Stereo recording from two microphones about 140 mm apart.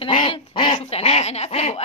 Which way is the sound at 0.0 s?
40° left (ahead or behind).